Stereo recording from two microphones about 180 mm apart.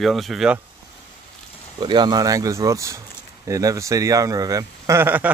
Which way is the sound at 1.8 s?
25° right (ahead or behind).